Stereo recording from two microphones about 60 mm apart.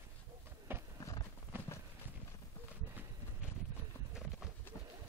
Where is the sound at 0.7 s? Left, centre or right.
Right.